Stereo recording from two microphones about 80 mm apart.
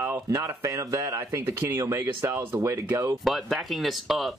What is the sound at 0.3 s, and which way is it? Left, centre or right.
Speech, right.